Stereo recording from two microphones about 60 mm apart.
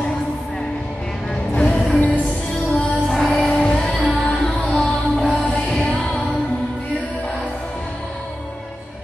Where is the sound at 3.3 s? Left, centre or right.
Left.